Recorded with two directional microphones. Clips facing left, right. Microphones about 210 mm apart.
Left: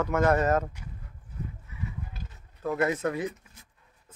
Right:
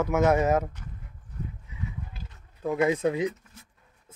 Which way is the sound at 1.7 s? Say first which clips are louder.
Right 1 dB; 15° right (ahead or behind).